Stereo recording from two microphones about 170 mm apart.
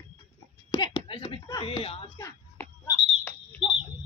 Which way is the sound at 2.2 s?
15° left (ahead or behind).